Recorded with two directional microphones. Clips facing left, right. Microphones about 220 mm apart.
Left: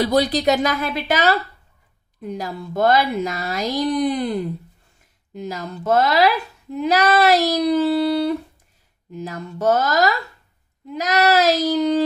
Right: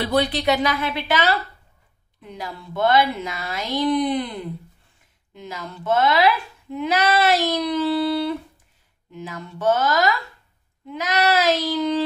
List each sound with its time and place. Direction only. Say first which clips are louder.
0.0 s a woman's voice: left 3 dB; 40° left (ahead or behind)